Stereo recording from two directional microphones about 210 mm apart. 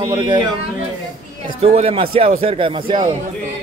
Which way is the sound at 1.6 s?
30° right (ahead or behind).